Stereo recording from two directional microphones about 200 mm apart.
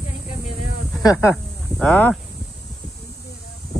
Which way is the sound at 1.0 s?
15° left (ahead or behind).